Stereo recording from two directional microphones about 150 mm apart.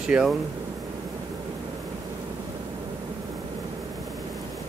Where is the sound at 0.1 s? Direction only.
10° right (ahead or behind).